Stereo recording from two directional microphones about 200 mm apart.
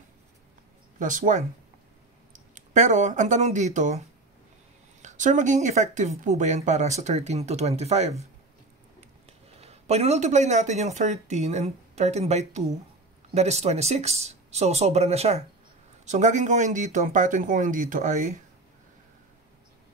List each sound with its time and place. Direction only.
0.9 s speech: 40° right (ahead or behind)
5.0 s speech: 40° right (ahead or behind)
9.6 s speech: 30° right (ahead or behind)